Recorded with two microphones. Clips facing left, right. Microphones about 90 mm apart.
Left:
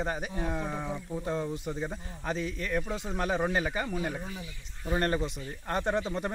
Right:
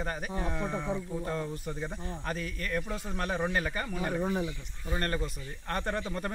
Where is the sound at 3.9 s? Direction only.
45° right (ahead or behind).